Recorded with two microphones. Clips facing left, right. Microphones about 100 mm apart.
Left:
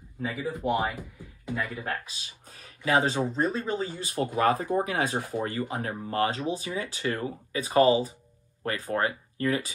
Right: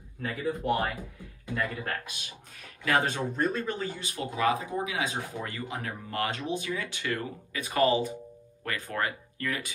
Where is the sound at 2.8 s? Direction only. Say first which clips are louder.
Left 3 dB; 20° left (ahead or behind).